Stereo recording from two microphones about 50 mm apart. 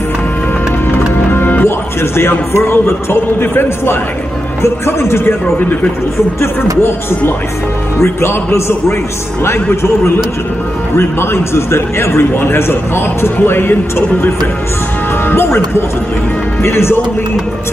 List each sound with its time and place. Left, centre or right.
0.9 s music: left
2.5 s a man's voice: left
5.2 s speech: left
6.4 s a man's voice: left
9.7 s a man's voice: left
16.6 s a man's voice: left